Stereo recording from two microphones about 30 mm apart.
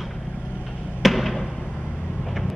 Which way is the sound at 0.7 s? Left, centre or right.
Left.